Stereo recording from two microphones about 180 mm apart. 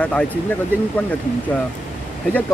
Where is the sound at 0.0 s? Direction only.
5° left (ahead or behind).